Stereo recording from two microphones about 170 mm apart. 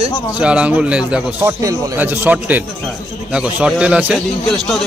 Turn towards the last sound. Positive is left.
turn(degrees=-5)  # may be behind; listen again after turning